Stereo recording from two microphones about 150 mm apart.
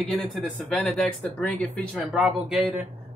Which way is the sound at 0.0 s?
Centre (ahead or behind).